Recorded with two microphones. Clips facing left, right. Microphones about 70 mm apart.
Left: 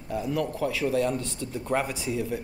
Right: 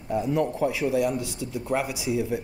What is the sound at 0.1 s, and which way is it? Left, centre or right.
A man's voice, right.